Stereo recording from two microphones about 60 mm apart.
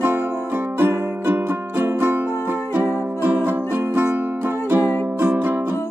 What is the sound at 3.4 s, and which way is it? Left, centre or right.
Music, right.